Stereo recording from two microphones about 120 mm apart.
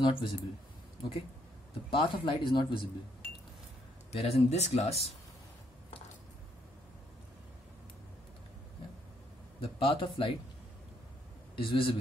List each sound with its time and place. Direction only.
0.0 s speech: 45° left (ahead or behind)
1.9 s speech: 40° left (ahead or behind)
4.1 s speech: 60° left (ahead or behind)
9.6 s speech: 45° left (ahead or behind)
11.5 s speech: 45° left (ahead or behind)